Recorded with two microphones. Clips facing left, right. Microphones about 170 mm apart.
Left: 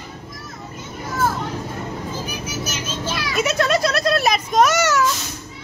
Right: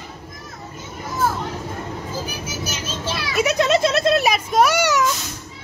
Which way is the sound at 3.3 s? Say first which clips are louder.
Right 2 dB; 10° right (ahead or behind).